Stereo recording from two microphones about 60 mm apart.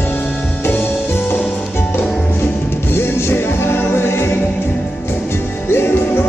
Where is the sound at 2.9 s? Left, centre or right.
Left.